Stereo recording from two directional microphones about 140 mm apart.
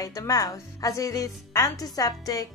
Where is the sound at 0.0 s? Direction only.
25° left (ahead or behind).